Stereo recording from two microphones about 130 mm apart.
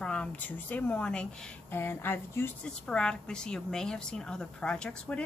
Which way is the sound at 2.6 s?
5° left (ahead or behind).